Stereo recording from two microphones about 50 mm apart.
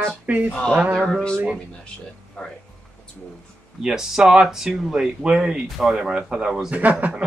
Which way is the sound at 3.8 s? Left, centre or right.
Centre.